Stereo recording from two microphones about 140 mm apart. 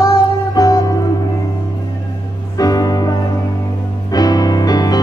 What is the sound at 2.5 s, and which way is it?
Music, 25° left (ahead or behind).